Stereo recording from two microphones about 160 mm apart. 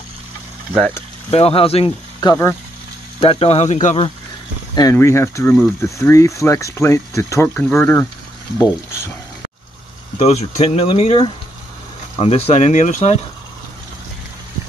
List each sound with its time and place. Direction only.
1.3 s speech: 35° left (ahead or behind)
2.1 s speech: 20° left (ahead or behind)
3.2 s speech: 35° left (ahead or behind)
4.9 s speech: 15° left (ahead or behind)
10.1 s speech: 45° left (ahead or behind)